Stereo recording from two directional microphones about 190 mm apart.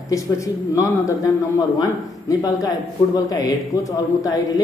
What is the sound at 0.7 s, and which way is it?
A man's voice, 15° left (ahead or behind).